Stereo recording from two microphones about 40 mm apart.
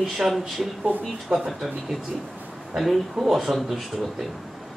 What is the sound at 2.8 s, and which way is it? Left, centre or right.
Speech, centre.